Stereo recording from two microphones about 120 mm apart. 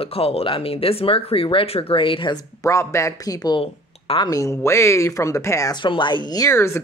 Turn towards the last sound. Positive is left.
turn(degrees=20)  # may be behind; listen again after turning